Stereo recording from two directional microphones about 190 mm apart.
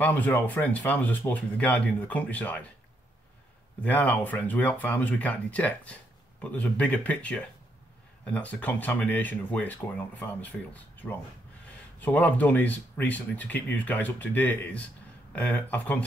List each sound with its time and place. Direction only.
0.0 s speech: 10° left (ahead or behind)
3.8 s speech: 10° left (ahead or behind)